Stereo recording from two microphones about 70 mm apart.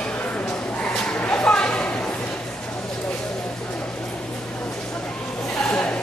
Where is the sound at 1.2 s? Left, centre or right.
Centre.